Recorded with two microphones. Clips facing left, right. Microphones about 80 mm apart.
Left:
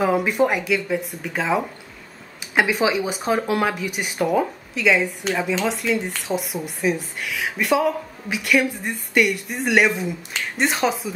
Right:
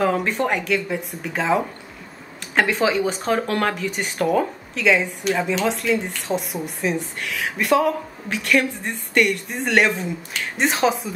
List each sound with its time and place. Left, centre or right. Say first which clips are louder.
0.0 s a woman's voice: left 2 dB; centre